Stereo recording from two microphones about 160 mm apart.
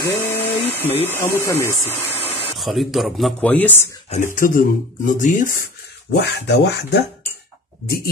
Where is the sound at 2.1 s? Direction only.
40° left (ahead or behind).